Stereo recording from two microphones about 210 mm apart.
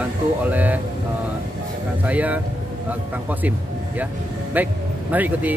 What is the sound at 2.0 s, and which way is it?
Speech, 5° right (ahead or behind).